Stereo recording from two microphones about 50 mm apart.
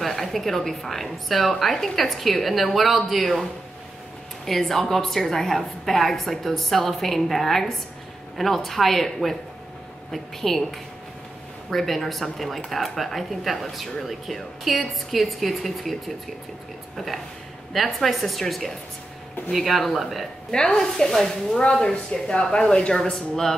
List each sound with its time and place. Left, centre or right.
0.0 s speech: centre
4.5 s speech: centre
20.5 s a woman's voice: centre
23.1 s speech: centre